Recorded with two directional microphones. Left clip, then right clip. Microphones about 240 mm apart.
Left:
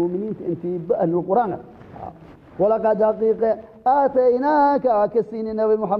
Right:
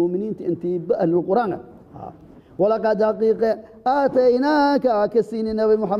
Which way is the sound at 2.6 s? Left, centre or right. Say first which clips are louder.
Left 1 dB; right.